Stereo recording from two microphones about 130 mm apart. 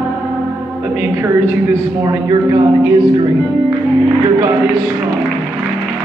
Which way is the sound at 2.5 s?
35° right (ahead or behind).